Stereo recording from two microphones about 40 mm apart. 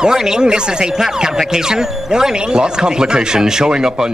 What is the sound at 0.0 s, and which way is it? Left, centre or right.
Speech, centre.